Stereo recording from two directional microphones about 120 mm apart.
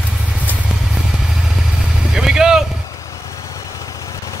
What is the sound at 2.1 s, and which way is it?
Vehicle, 5° right (ahead or behind).